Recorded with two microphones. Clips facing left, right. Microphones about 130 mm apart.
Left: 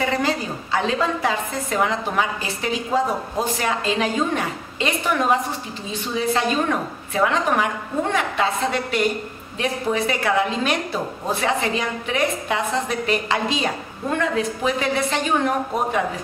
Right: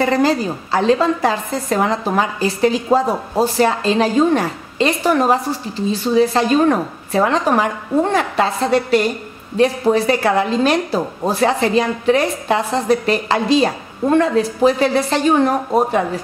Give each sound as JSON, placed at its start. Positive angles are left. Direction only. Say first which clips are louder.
{"t": 0.0, "sound": "a woman's voice", "louder": "right 7 dB", "side_deg": -35}
{"t": 9.6, "sound": "a woman's voice", "louder": "right 8 dB", "side_deg": -35}